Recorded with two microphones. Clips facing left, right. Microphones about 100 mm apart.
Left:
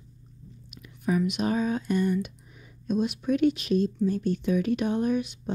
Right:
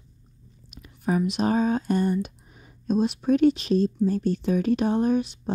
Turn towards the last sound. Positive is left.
turn(degrees=-35)  # may be behind; listen again after turning